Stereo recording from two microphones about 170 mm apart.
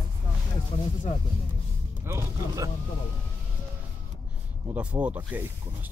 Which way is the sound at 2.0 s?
15° right (ahead or behind).